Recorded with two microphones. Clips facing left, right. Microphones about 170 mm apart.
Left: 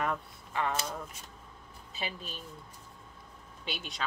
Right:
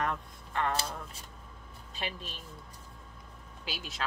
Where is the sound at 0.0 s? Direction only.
5° left (ahead or behind).